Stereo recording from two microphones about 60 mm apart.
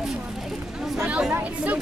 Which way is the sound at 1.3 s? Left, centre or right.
Right.